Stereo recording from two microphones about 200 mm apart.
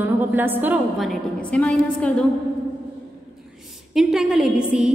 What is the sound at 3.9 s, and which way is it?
A woman's voice, centre (ahead or behind).